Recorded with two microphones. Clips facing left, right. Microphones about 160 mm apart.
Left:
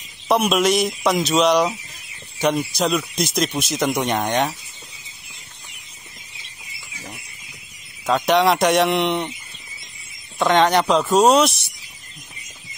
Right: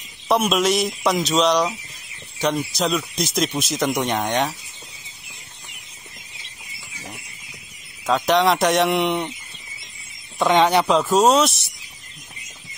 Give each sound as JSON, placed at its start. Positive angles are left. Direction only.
{"t": 0.3, "sound": "speech", "side_deg": 0}
{"t": 8.1, "sound": "speech", "side_deg": 0}
{"t": 10.4, "sound": "speech", "side_deg": -5}